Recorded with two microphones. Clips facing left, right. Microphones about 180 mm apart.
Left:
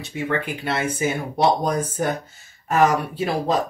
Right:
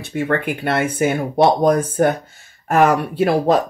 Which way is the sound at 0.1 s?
55° right (ahead or behind).